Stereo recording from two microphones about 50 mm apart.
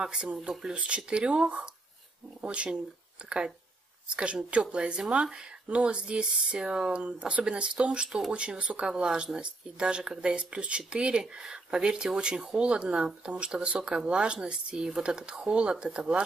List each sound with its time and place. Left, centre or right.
0.0 s speech: centre
0.7 s speech: right